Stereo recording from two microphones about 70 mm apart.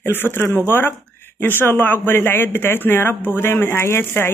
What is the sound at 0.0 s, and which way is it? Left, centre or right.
Speech, left.